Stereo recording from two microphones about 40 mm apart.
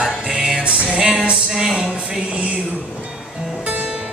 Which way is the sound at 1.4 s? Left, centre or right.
Centre.